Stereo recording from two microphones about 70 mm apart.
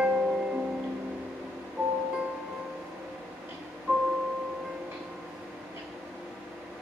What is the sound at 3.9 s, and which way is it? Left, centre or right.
Music, right.